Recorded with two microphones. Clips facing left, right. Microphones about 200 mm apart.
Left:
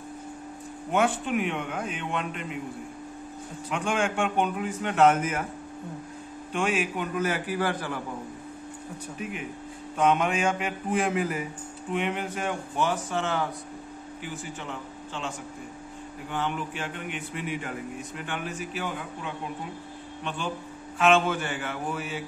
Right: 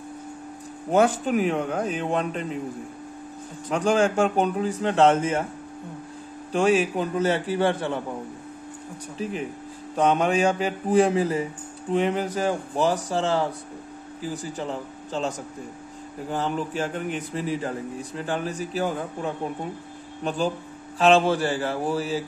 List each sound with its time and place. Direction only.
0.9 s a man's voice: 40° right (ahead or behind)
3.7 s a man's voice: 35° right (ahead or behind)
6.5 s a man's voice: 35° right (ahead or behind)
9.2 s a man's voice: 35° right (ahead or behind)